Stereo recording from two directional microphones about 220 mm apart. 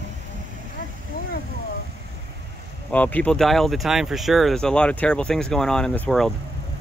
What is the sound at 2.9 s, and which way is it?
Speech, 5° left (ahead or behind).